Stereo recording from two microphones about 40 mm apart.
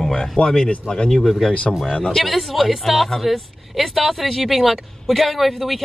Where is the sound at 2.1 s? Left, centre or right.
Centre.